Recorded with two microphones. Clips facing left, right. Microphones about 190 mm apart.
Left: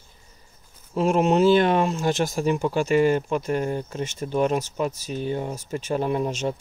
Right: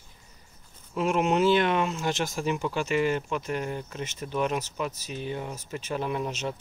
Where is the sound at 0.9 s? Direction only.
35° left (ahead or behind).